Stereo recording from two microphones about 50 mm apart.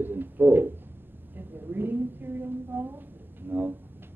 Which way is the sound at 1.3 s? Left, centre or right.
Right.